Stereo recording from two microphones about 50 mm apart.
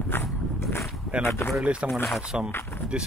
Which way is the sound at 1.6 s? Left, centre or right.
Centre.